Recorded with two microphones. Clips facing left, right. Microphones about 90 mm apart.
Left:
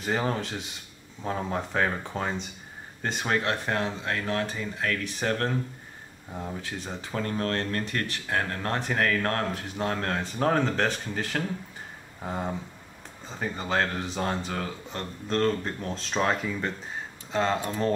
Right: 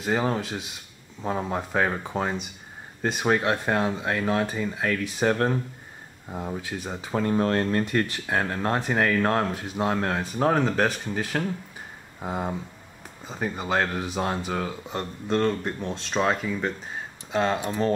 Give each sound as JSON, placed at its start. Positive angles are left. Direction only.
{"t": 0.0, "sound": "speech", "side_deg": -5}
{"t": 17.6, "sound": "speech", "side_deg": -15}